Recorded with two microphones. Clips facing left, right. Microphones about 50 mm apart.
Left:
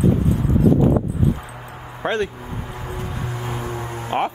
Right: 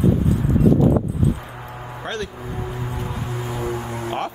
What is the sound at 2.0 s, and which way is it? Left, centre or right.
Speech, left.